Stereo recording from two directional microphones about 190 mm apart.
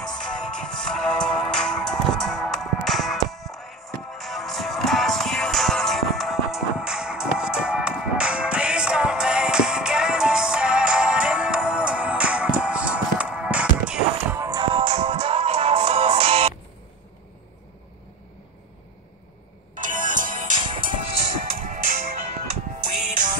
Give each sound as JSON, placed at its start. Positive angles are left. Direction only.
{"t": 0.0, "sound": "music", "side_deg": 5}
{"t": 14.4, "sound": "music", "side_deg": -25}
{"t": 19.7, "sound": "music", "side_deg": -45}
{"t": 23.0, "sound": "music", "side_deg": -40}